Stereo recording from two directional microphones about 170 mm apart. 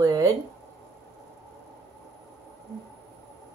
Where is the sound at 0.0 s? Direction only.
20° right (ahead or behind).